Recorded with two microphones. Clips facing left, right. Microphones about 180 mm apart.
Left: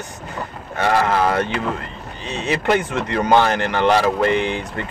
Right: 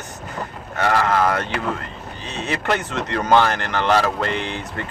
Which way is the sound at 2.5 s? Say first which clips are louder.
Left 4 dB; 10° left (ahead or behind).